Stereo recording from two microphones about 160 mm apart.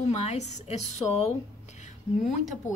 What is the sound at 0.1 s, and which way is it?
Speech, 45° left (ahead or behind).